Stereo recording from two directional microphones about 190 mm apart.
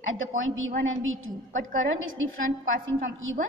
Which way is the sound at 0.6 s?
90° right.